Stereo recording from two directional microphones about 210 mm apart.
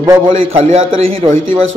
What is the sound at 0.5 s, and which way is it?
Speech, 30° right (ahead or behind).